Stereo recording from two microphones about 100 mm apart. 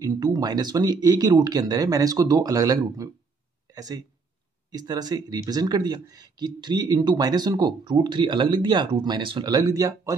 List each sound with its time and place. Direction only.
0.0 s speech: 40° right (ahead or behind)
9.4 s speech: 40° right (ahead or behind)